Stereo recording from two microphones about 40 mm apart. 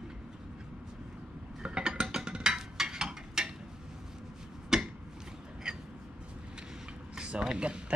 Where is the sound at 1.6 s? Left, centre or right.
Right.